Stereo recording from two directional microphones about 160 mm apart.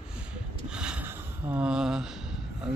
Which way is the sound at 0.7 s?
5° right (ahead or behind).